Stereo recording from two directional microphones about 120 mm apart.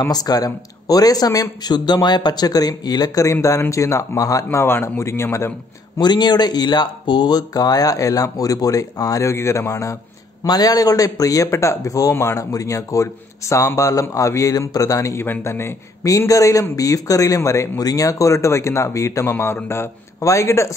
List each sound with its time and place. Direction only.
0.0 s a man's voice: 30° left (ahead or behind)
5.9 s a man's voice: 35° left (ahead or behind)